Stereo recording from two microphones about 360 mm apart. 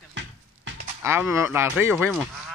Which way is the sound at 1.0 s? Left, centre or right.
Centre.